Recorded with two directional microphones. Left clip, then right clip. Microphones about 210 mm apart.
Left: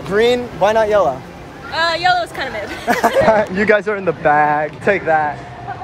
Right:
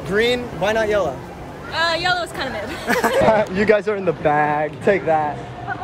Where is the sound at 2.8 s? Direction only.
5° right (ahead or behind).